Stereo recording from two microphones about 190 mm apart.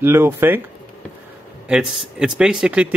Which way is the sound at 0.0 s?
10° right (ahead or behind).